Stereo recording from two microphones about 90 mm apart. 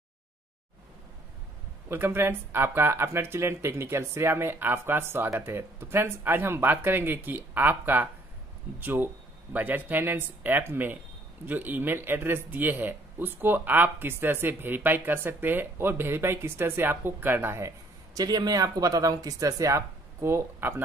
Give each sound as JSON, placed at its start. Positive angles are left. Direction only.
{"t": 1.9, "sound": "speech", "side_deg": -25}